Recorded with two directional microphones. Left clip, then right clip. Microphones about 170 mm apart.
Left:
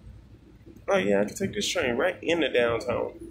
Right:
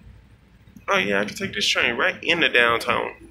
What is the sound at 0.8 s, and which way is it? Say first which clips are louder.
Speech: right 3 dB; 20° left (ahead or behind).